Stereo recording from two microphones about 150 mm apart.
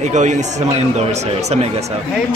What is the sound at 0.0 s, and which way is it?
Speech, 50° right (ahead or behind).